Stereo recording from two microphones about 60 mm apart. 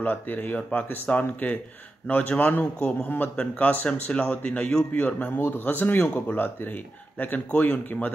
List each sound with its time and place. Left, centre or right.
0.0 s speech: left
5.0 s speech: left